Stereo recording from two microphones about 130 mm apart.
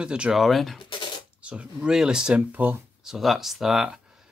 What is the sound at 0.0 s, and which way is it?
Speech, 5° right (ahead or behind).